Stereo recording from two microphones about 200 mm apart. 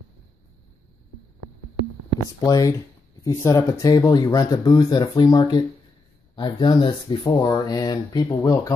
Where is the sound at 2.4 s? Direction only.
15° left (ahead or behind).